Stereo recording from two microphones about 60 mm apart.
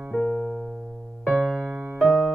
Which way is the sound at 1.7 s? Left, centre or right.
Right.